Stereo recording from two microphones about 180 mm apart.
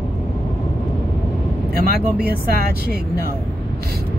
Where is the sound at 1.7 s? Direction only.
55° right (ahead or behind).